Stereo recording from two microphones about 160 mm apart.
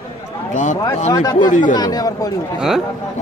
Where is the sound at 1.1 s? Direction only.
25° left (ahead or behind).